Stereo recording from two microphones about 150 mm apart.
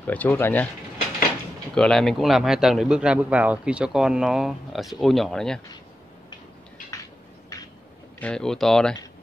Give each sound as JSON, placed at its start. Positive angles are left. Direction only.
{"t": 0.0, "sound": "speech", "side_deg": 10}
{"t": 1.8, "sound": "speech", "side_deg": 5}
{"t": 8.2, "sound": "speech", "side_deg": 5}